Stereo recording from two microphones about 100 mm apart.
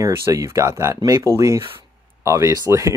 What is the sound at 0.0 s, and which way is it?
Speech, 30° right (ahead or behind).